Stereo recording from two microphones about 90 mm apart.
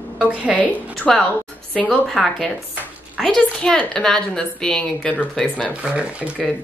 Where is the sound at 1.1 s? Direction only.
5° left (ahead or behind).